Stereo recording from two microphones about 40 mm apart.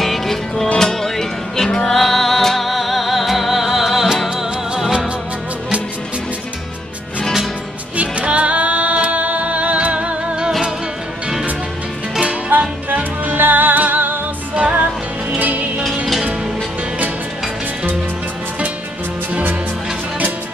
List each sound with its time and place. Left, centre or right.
0.0 s music: centre
7.9 s music: right
12.4 s music: right
14.5 s music: right
15.3 s music: right